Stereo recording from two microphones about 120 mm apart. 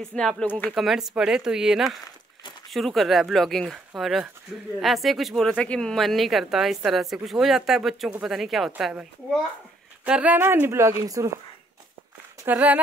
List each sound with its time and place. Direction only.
0.0 s speech: 5° left (ahead or behind)
0.7 s speech: centre (ahead or behind)
10.0 s speech: 10° right (ahead or behind); by 11.2 s 25° right (ahead or behind)
12.4 s speech: 10° right (ahead or behind)